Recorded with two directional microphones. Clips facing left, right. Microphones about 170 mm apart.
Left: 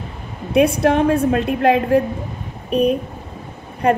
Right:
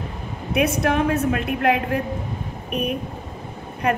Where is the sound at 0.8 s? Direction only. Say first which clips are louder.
Left 5 dB; 30° left (ahead or behind).